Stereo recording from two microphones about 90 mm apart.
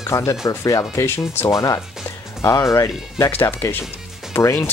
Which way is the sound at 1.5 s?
40° left (ahead or behind).